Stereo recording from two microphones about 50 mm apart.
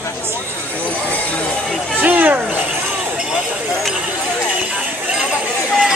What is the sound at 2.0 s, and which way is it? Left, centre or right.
Speech, right.